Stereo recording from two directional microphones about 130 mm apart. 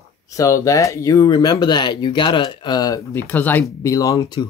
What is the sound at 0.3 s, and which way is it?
Speech, 25° left (ahead or behind).